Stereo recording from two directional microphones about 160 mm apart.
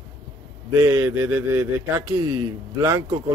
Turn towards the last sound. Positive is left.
turn(degrees=-20)  # may be behind; listen again after turning